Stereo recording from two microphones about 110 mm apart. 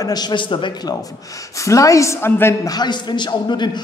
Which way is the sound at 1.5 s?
30° left (ahead or behind).